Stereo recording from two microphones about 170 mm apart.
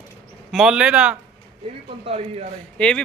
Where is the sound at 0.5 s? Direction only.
5° right (ahead or behind).